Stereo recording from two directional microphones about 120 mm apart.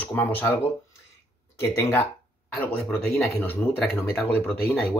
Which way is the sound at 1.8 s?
15° left (ahead or behind).